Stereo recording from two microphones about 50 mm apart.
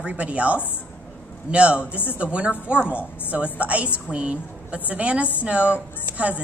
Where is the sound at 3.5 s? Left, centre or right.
Right.